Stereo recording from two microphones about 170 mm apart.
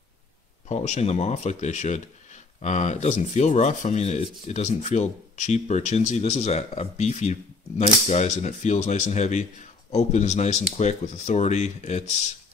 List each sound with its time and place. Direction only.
0.7 s speech: 40° left (ahead or behind)